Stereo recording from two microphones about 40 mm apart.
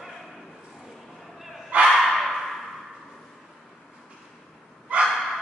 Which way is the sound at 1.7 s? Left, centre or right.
Right.